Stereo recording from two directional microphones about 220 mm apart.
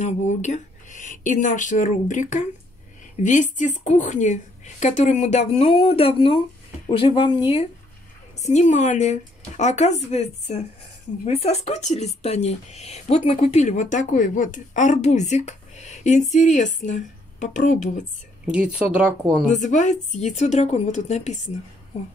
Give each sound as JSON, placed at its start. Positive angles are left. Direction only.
{"t": 0.0, "sound": "a woman's voice", "side_deg": 30}
{"t": 18.4, "sound": "speech", "side_deg": -5}
{"t": 19.5, "sound": "speech", "side_deg": 35}